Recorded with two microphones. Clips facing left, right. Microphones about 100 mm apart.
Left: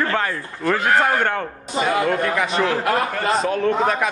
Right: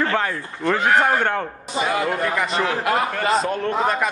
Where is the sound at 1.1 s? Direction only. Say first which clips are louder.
Even; 5° right (ahead or behind).